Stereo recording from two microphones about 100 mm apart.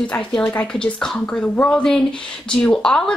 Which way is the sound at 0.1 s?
15° left (ahead or behind).